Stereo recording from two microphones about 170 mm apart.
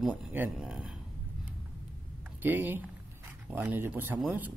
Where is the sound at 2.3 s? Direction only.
10° right (ahead or behind).